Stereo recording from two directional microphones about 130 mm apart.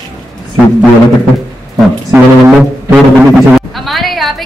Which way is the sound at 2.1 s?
15° right (ahead or behind).